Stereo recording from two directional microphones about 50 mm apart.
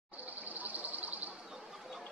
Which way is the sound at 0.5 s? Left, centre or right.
Right.